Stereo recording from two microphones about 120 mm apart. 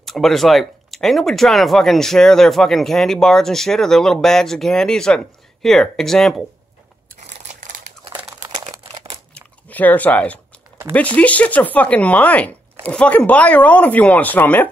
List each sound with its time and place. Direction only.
0.0 s speech: centre (ahead or behind)
7.2 s crumpling: 75° right (ahead or behind)
8.3 s crumpling: 35° right (ahead or behind)
9.3 s chewing: 15° left (ahead or behind)
11.1 s speech: 10° left (ahead or behind)